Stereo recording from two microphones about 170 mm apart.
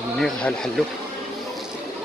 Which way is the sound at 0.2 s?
5° left (ahead or behind).